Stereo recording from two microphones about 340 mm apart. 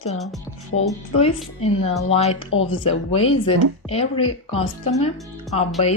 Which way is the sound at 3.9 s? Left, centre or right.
Centre.